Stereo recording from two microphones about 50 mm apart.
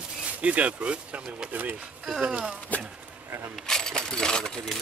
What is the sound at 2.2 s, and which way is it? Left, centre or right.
Speech, right.